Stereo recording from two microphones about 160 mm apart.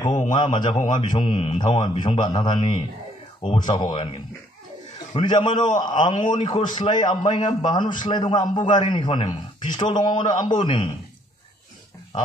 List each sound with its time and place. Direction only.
0.3 s a man's voice: 30° left (ahead or behind)